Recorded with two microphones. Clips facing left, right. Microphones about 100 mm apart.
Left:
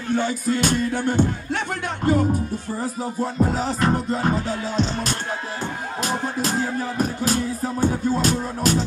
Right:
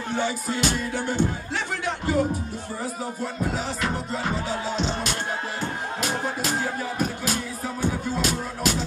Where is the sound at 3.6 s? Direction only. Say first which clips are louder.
Left 6 dB; 40° left (ahead or behind).